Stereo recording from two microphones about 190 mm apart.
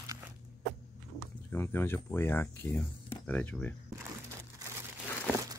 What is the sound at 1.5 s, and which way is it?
Speech, 10° left (ahead or behind).